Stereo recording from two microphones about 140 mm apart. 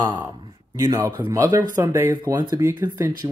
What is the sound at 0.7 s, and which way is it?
Speech, 20° right (ahead or behind).